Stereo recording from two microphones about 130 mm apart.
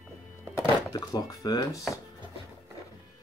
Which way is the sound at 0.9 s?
25° left (ahead or behind).